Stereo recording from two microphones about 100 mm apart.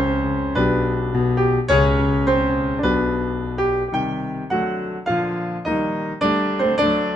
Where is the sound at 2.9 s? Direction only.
20° left (ahead or behind).